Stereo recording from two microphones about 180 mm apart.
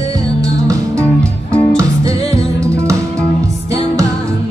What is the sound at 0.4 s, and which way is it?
Music, 20° right (ahead or behind).